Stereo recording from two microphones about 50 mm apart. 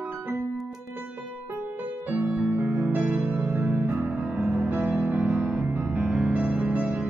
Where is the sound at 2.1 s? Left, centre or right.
Right.